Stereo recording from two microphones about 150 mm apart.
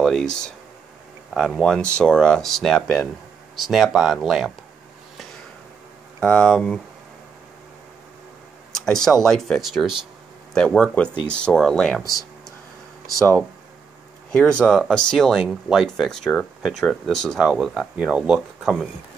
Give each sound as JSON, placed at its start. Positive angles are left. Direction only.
{"t": 0.0, "sound": "speech", "side_deg": 5}
{"t": 6.2, "sound": "speech", "side_deg": 5}
{"t": 8.7, "sound": "speech", "side_deg": 5}
{"t": 12.0, "sound": "a sound", "side_deg": 25}
{"t": 14.3, "sound": "speech", "side_deg": 5}